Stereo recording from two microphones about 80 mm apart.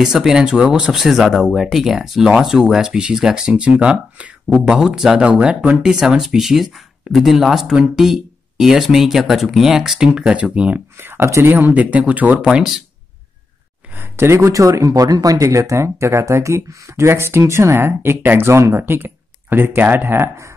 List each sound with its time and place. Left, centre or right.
0.0 s speech: centre
0.9 s speech: centre
11.0 s speech: right
11.5 s speech: centre
12.4 s speech: centre
13.9 s speech: right